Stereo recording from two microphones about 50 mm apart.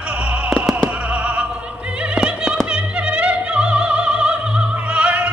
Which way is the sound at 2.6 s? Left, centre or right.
Right.